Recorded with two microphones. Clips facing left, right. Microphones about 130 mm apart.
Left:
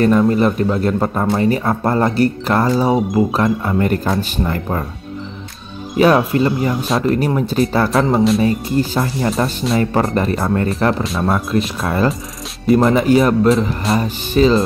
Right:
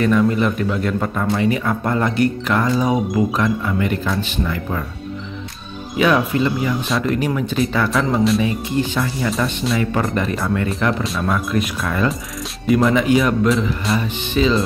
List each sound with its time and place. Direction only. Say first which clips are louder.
0.0 s speech: left 3 dB; 40° left (ahead or behind)
5.9 s speech: left 4 dB; 40° left (ahead or behind)